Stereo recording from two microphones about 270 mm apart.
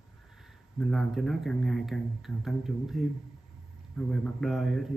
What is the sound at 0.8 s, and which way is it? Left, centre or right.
Speech, centre.